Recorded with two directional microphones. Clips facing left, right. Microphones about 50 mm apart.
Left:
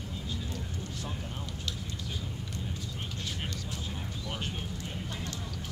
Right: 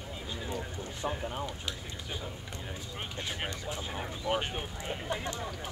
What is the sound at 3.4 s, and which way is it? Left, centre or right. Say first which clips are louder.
Speech: right 2 dB; right.